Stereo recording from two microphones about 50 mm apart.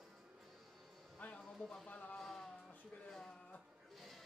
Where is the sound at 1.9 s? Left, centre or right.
Left.